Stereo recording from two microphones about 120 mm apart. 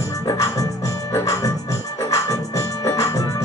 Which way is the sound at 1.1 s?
25° left (ahead or behind).